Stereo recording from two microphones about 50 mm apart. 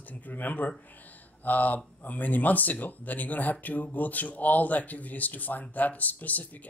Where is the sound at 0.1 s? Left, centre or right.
Left.